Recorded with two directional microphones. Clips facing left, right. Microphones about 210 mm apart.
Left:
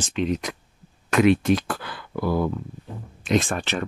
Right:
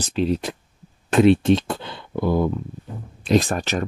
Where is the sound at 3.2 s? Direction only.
35° right (ahead or behind).